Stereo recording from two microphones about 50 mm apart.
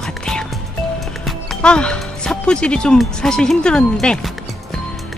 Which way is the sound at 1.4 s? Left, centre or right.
Centre.